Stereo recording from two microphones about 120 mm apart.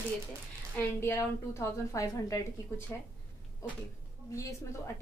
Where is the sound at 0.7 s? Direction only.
20° left (ahead or behind).